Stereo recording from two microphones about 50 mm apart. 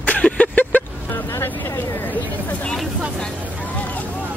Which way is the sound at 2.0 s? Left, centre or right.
Left.